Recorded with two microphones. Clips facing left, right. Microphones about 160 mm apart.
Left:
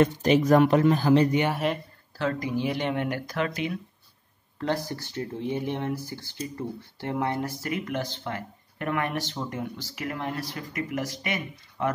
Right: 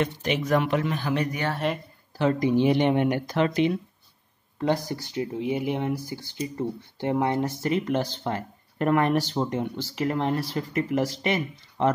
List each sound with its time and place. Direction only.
0.0 s speech: 40° left (ahead or behind)
1.5 s speech: 5° left (ahead or behind)
2.1 s speech: 20° right (ahead or behind)
4.6 s speech: 15° right (ahead or behind)